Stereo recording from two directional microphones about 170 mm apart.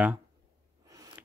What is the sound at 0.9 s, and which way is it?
Scissors, 20° right (ahead or behind).